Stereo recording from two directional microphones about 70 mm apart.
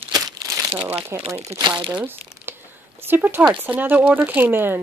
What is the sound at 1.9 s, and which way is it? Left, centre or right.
Crumpling, right.